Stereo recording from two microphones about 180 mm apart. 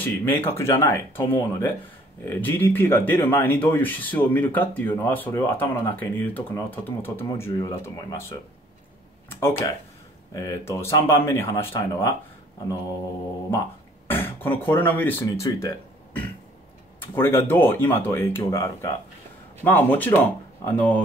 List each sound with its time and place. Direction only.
0.0 s speech: 10° left (ahead or behind)
9.4 s speech: 15° left (ahead or behind)
14.0 s throat clearing: 10° left (ahead or behind)
14.7 s speech: 10° left (ahead or behind)